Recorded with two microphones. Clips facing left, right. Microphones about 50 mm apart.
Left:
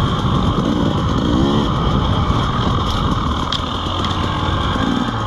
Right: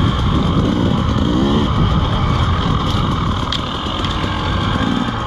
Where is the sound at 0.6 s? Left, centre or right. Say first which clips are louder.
Right 1 dB; right.